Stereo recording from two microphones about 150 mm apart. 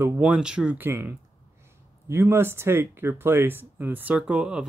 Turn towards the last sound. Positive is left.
turn(degrees=-5)  # may be behind; listen again after turning